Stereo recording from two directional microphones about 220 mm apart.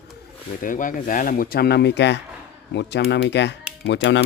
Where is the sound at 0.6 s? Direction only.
35° left (ahead or behind).